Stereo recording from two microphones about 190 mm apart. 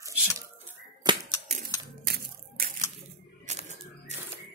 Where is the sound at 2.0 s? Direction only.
50° right (ahead or behind).